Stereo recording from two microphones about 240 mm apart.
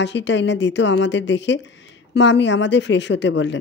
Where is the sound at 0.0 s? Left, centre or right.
Left.